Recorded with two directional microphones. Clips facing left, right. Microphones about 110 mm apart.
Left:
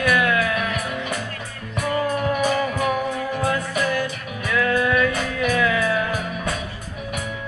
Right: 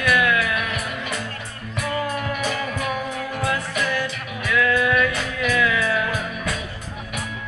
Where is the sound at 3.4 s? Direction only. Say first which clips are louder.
Left 1 dB; 40° left (ahead or behind).